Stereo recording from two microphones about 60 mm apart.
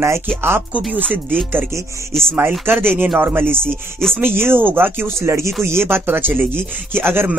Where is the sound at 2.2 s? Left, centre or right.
Right.